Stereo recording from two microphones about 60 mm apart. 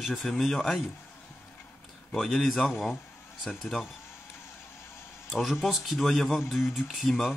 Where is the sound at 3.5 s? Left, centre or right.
Left.